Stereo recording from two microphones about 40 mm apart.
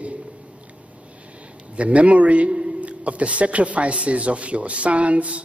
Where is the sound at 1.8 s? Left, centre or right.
Right.